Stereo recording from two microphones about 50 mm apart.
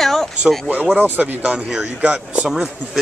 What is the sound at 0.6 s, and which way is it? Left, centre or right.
Speech, right.